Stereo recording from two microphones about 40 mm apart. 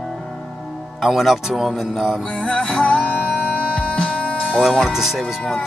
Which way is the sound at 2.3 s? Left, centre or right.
Left.